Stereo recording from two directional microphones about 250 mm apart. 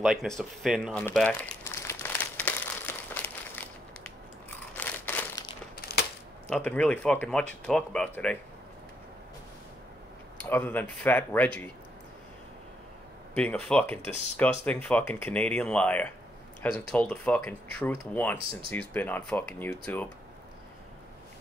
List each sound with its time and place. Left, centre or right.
0.0 s crumpling: centre
4.7 s a sound: centre
5.8 s crushing: left
6.5 s speech: centre
10.5 s speech: centre
13.3 s speech: centre